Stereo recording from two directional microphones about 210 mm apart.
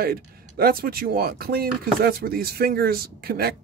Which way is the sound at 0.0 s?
45° right (ahead or behind).